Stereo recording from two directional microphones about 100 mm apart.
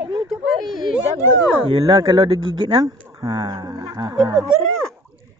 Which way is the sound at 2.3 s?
55° right (ahead or behind).